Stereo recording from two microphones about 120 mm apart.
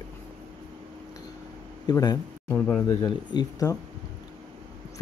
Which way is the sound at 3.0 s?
35° left (ahead or behind).